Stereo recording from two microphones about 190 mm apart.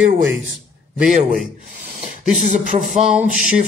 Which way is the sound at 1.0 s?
40° right (ahead or behind).